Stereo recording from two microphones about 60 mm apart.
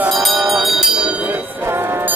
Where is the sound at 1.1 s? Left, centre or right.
Right.